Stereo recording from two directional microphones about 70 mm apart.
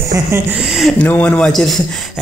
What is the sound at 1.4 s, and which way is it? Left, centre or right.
Speech, centre.